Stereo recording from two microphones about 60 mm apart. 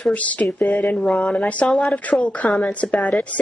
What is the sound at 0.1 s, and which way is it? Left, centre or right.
Speech, left.